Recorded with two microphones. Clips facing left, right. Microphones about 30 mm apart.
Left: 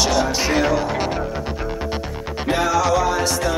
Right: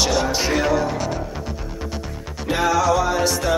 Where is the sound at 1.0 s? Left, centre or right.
Left.